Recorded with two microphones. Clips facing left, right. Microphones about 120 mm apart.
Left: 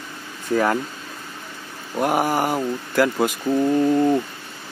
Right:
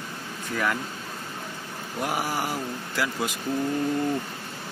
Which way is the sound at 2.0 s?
55° left (ahead or behind).